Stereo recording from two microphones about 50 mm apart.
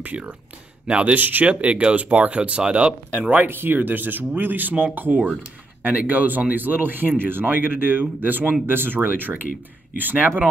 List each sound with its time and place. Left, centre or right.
0.0 s speech: right
1.1 s speech: right
3.2 s speech: right